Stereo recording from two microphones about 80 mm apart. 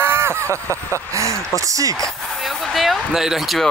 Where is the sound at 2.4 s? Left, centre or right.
Centre.